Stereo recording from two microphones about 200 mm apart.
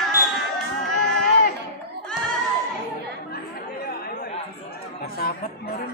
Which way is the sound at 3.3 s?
50° left (ahead or behind).